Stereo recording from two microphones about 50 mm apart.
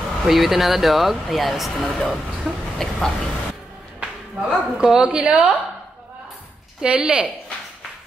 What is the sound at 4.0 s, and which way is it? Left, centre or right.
A woman's voice, centre.